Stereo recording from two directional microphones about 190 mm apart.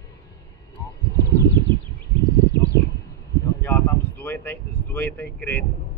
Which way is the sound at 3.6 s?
10° left (ahead or behind).